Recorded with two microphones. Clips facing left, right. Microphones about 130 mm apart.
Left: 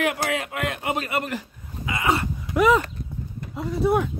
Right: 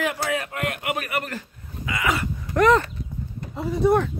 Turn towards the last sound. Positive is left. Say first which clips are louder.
# right 2 dB
turn(degrees=5)  # may be behind; listen again after turning